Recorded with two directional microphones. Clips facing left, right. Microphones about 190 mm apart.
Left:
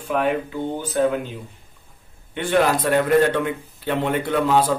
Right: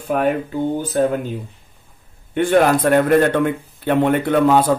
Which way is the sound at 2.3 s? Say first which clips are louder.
Right 5 dB; 50° right (ahead or behind).